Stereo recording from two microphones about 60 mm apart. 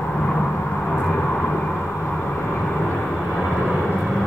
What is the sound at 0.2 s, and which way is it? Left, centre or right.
Vehicle, centre.